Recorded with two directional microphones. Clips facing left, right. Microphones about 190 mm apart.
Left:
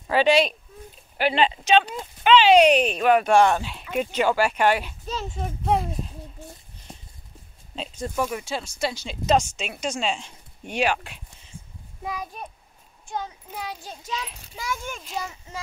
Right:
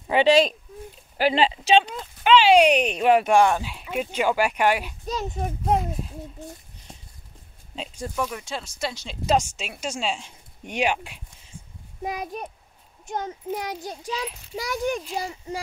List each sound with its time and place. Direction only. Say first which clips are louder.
0.1 s speech: right 1 dB; 20° right (ahead or behind)
1.1 s a child's voice: right 1 dB; 35° right (ahead or behind)
2.2 s speech: left 1 dB; 10° right (ahead or behind)
3.3 s speech: even; 10° right (ahead or behind)
7.7 s speech: left 2 dB; 10° right (ahead or behind)
8.2 s speech: left 2 dB; 5° left (ahead or behind)
9.2 s speech: left 1 dB; 10° right (ahead or behind)
13.1 s a child's voice: right 4 dB; 45° right (ahead or behind)
13.8 s speech: right 3 dB; 10° right (ahead or behind)
14.5 s a child's voice: right 7 dB; 40° right (ahead or behind)